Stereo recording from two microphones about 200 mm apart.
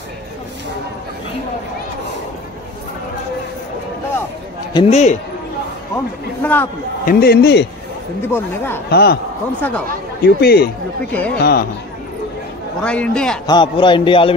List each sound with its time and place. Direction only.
4.7 s a man's voice: 30° left (ahead or behind)
6.4 s speech: 10° left (ahead or behind)
7.1 s a man's voice: 50° left (ahead or behind)
8.3 s speech: 10° left (ahead or behind)
8.9 s a man's voice: 55° left (ahead or behind)
9.6 s speech: 10° left (ahead or behind)
10.2 s a man's voice: 50° left (ahead or behind)
12.8 s a man's voice: 5° left (ahead or behind)
13.5 s a man's voice: 25° left (ahead or behind)